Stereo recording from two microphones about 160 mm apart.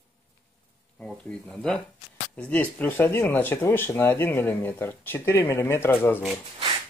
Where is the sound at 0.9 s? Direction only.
5° left (ahead or behind).